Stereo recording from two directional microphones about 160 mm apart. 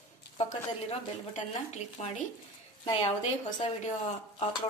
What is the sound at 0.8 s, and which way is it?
A woman's voice, 40° left (ahead or behind).